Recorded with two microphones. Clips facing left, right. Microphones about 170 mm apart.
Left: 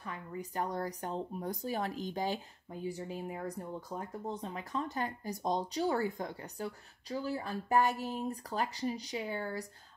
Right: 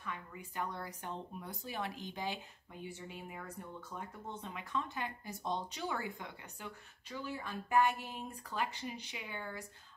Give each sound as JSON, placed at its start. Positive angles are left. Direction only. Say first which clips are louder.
{"t": 0.0, "sound": "speech", "louder": "left 4 dB", "side_deg": 35}